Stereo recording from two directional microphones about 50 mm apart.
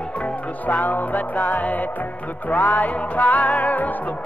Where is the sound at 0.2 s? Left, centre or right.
Left.